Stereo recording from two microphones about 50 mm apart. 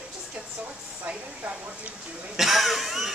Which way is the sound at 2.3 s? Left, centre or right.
Centre.